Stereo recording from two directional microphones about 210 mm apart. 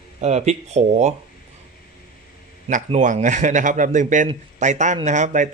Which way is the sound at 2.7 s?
35° right (ahead or behind).